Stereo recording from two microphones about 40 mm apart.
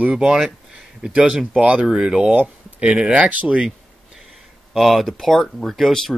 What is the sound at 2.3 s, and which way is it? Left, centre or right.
Speech, right.